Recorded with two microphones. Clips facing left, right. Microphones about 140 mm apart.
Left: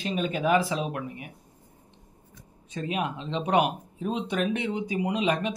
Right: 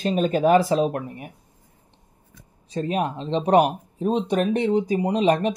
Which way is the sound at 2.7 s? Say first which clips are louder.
Right 5 dB; 35° right (ahead or behind).